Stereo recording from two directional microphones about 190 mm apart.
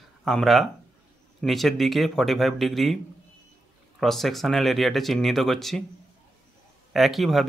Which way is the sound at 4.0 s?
Centre (ahead or behind).